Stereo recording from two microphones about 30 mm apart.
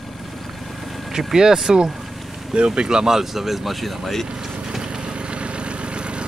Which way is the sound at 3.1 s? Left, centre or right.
Centre.